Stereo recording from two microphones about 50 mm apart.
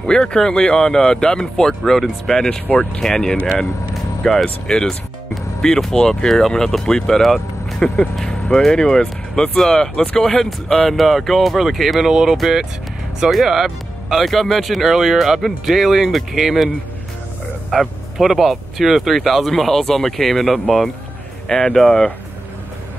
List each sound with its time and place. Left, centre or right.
0.0 s speech: centre
21.5 s speech: centre